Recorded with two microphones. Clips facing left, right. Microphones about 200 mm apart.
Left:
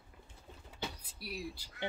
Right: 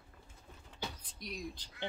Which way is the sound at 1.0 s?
5° left (ahead or behind).